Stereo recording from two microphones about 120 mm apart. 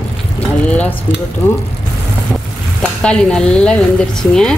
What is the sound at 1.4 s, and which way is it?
Speech, 20° left (ahead or behind).